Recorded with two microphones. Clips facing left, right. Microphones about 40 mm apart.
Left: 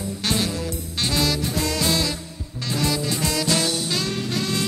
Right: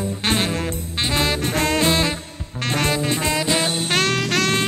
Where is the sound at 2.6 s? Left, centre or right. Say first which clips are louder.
Right 3 dB; right.